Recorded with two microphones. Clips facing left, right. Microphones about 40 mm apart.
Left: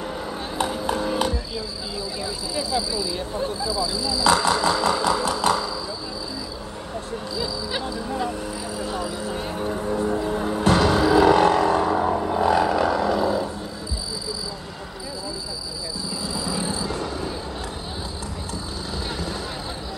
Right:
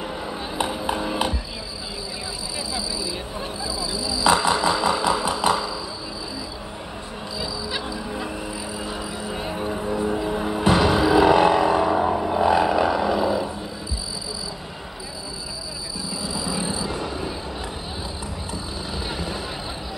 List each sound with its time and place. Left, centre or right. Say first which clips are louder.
0.0 s music: even; centre
2.7 s speech: left 3 dB; centre
3.4 s vehicle: left 4 dB; centre
7.3 s a sound: left 1 dB; centre
16.2 s frog: even; centre
19.0 s vehicle: even; centre